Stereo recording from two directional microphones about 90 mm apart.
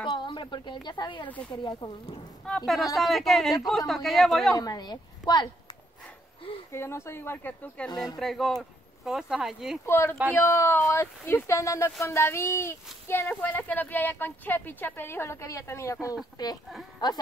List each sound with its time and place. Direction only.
0.0 s a woman's voice: 60° left (ahead or behind)
2.4 s speech: 5° left (ahead or behind)
4.6 s a woman's voice: 45° left (ahead or behind)
6.7 s speech: 30° left (ahead or behind)
7.9 s a woman's voice: 45° left (ahead or behind)
8.2 s speech: centre (ahead or behind)
9.8 s speech: 25° left (ahead or behind)
16.4 s a woman's voice: 45° left (ahead or behind)